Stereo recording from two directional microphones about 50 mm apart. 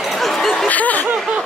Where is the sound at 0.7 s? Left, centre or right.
Left.